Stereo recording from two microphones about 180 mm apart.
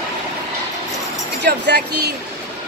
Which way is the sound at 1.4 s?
65° right (ahead or behind).